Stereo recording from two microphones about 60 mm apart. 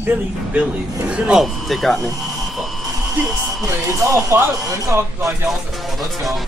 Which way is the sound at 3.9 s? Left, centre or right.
Right.